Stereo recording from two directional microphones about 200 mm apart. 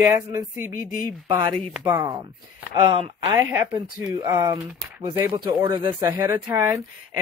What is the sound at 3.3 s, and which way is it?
Speech, 15° right (ahead or behind).